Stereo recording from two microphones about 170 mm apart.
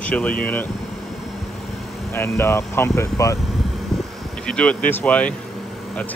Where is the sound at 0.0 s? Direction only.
5° left (ahead or behind).